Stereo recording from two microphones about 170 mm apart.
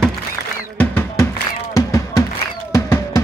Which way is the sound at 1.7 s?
20° left (ahead or behind).